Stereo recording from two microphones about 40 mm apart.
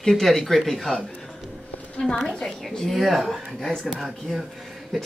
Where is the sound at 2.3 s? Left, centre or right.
Centre.